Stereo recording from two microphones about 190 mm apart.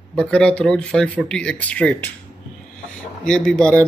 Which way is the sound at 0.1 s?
5° left (ahead or behind).